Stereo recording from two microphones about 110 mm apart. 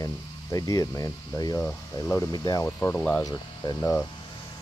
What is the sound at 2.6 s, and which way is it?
Speech, 25° left (ahead or behind).